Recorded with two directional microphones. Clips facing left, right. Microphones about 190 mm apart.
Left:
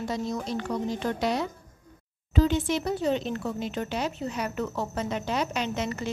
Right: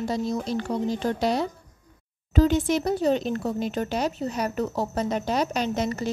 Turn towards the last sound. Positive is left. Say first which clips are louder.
# right 4 dB
turn(degrees=-40)  # may be behind; listen again after turning